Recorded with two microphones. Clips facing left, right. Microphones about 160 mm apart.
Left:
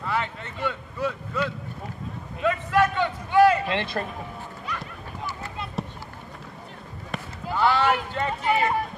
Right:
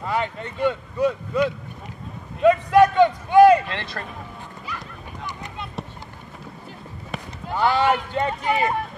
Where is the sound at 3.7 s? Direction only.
20° left (ahead or behind).